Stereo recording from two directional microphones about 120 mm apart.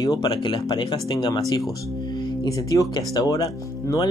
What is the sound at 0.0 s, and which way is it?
Speech, 35° left (ahead or behind).